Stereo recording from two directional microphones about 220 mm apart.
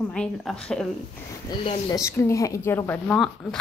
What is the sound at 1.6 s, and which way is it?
Speech, 25° left (ahead or behind).